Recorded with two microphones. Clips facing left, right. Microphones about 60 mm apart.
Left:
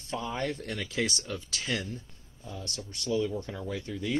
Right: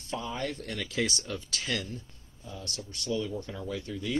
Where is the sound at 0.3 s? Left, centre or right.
Left.